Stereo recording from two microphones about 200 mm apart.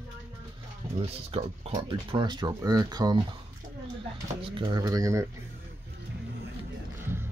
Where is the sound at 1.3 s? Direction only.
30° right (ahead or behind).